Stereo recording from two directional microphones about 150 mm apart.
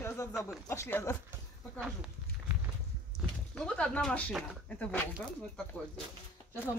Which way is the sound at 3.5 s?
5° left (ahead or behind).